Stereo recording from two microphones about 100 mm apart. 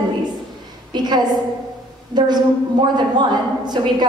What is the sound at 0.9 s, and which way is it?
A woman's voice, 45° right (ahead or behind).